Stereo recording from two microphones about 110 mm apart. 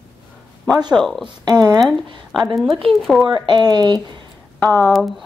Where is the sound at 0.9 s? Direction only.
Centre (ahead or behind).